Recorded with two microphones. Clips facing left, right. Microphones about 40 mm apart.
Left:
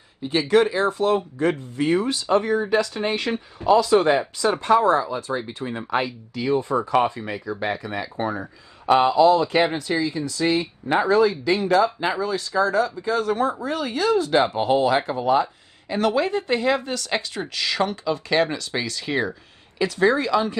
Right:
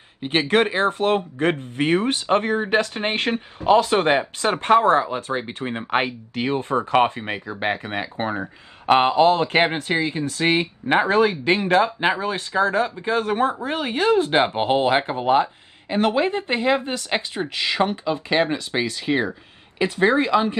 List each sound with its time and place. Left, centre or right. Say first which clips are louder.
0.2 s speech: left 1 dB; right